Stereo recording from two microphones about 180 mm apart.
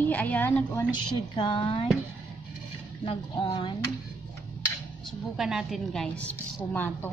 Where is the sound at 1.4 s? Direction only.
25° left (ahead or behind).